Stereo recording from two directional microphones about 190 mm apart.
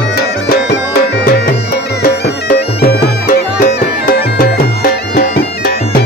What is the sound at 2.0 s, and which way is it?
Bagpipes, 55° left (ahead or behind).